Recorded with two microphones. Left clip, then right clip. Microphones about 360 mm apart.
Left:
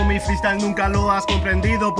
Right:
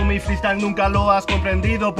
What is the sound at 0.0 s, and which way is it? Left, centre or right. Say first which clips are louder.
Music: left 1 dB; centre.